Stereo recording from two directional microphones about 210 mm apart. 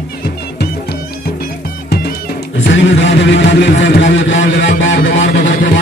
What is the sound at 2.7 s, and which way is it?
A man's voice, 60° left (ahead or behind).